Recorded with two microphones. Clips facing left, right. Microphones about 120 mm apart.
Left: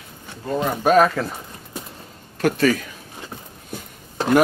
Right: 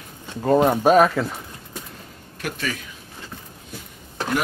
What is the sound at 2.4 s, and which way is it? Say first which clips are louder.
Speech: left 11 dB; 45° left (ahead or behind).